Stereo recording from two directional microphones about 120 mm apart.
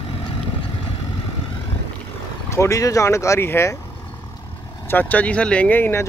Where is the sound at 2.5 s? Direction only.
25° left (ahead or behind).